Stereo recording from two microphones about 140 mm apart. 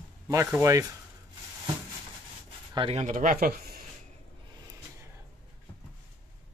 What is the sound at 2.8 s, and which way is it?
Speech, 50° right (ahead or behind).